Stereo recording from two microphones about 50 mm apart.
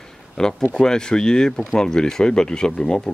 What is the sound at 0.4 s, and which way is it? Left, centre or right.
Speech, centre.